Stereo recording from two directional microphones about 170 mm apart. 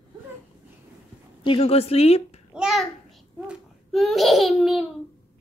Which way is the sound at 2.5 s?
5° right (ahead or behind).